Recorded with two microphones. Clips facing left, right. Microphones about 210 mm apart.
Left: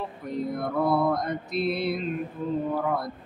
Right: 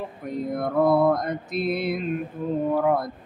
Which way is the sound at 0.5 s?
50° right (ahead or behind).